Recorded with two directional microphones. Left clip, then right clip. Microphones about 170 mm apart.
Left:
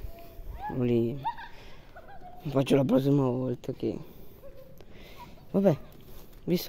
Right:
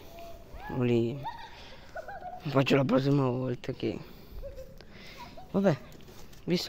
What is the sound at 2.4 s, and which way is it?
Speech, 25° left (ahead or behind).